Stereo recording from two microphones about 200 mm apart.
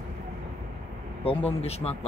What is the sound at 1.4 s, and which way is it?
Speech, 30° left (ahead or behind).